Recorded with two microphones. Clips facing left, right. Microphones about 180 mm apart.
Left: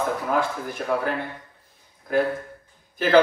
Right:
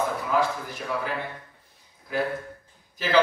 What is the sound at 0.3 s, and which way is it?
Speech, 55° left (ahead or behind).